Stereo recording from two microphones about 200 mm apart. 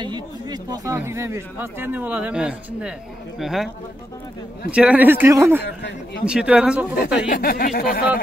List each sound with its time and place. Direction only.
0.0 s speech: 20° right (ahead or behind)
5.8 s speech: 55° left (ahead or behind)
6.2 s speech: 5° right (ahead or behind)
7.2 s speech: 50° left (ahead or behind)